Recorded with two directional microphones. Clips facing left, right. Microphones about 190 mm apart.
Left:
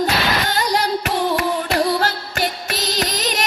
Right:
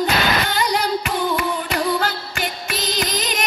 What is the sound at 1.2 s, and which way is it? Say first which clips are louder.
Music: left 2 dB; 40° left (ahead or behind).